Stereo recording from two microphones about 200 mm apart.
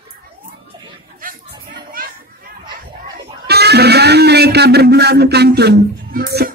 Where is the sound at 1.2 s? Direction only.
50° right (ahead or behind).